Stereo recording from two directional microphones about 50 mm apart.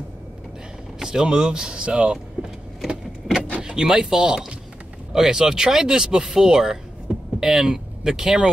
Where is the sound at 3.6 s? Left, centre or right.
Centre.